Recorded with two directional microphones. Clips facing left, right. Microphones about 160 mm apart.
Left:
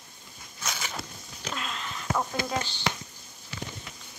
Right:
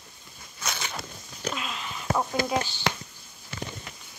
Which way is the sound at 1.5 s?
5° right (ahead or behind).